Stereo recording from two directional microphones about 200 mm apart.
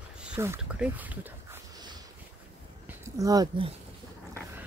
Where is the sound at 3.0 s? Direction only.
15° right (ahead or behind).